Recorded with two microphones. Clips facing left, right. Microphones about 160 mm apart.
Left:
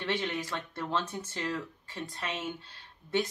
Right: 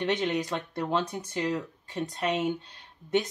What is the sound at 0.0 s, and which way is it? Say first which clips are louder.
Speech: right 5 dB; 20° right (ahead or behind).